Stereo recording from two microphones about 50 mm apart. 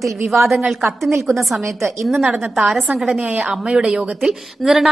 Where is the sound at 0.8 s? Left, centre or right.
Right.